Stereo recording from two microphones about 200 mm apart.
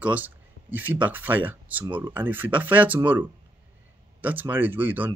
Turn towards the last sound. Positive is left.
turn(degrees=-10)  # may be behind; listen again after turning